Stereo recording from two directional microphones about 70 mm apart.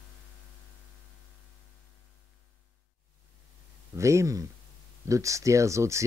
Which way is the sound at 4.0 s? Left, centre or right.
Right.